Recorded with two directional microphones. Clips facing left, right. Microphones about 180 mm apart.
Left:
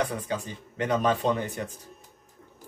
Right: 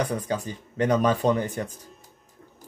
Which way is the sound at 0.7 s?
40° right (ahead or behind).